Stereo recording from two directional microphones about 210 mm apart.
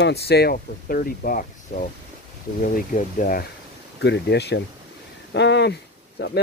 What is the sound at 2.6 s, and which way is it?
Speech, 40° left (ahead or behind).